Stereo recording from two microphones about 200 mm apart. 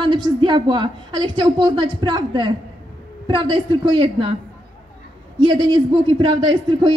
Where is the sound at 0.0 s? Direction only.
25° right (ahead or behind).